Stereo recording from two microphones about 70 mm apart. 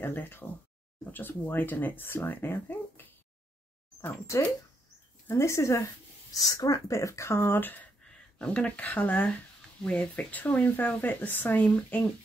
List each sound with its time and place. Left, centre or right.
0.0 s speech: left
6.3 s speech: left
8.4 s speech: centre